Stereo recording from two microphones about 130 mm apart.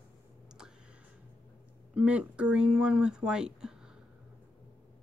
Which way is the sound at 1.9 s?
10° right (ahead or behind).